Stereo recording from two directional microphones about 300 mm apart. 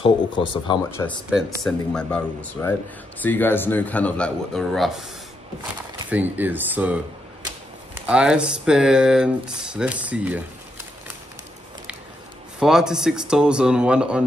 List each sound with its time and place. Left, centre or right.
0.0 s speech: centre
1.6 s speech: centre
8.1 s speech: centre
12.5 s speech: centre